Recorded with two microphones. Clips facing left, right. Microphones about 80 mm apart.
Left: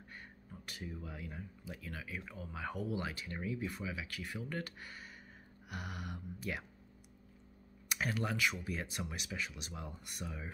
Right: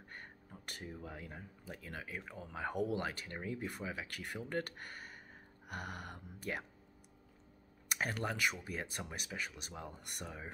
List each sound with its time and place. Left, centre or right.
0.1 s speech: right
2.7 s speech: right
8.0 s speech: right